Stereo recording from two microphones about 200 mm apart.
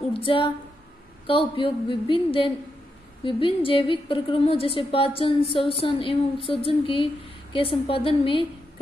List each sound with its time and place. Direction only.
0.1 s a woman's voice: 25° left (ahead or behind)